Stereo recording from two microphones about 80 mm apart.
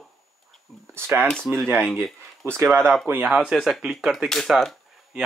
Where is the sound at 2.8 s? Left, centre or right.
Centre.